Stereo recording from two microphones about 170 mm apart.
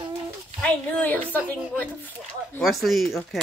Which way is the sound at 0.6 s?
10° left (ahead or behind).